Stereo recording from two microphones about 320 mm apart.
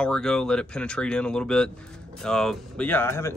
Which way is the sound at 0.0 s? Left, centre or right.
Centre.